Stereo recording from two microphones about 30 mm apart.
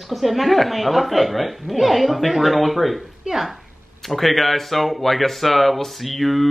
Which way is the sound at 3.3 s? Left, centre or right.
Right.